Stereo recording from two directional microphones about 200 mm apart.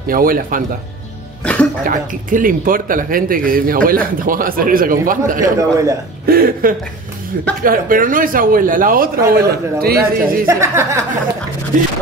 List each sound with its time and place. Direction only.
0.1 s speech: 45° right (ahead or behind)
1.4 s cough: 5° left (ahead or behind)
1.9 s speech: 40° right (ahead or behind)
10.4 s speech: 15° right (ahead or behind)
11.7 s speech: 40° right (ahead or behind)